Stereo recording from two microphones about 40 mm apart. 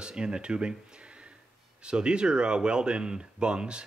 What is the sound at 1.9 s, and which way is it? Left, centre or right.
Speech, right.